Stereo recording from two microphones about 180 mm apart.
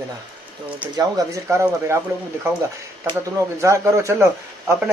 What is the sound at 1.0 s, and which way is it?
Speech, 20° right (ahead or behind).